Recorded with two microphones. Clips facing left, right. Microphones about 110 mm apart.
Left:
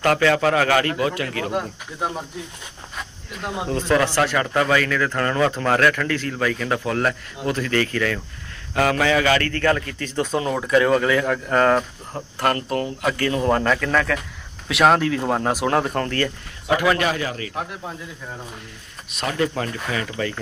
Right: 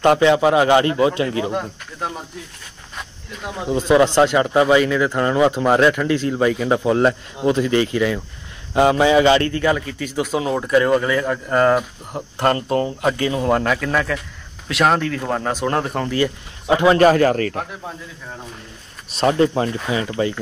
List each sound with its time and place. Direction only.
0.0 s speech: 20° right (ahead or behind)
1.5 s speech: centre (ahead or behind)
3.0 s cricket: centre (ahead or behind)
3.6 s a man's voice: 15° right (ahead or behind)
12.4 s speech: 25° right (ahead or behind)
13.3 s a man's voice: 5° right (ahead or behind)
16.6 s speech: 25° right (ahead or behind)
17.0 s speech: 45° right (ahead or behind)
19.1 s speech: 30° right (ahead or behind)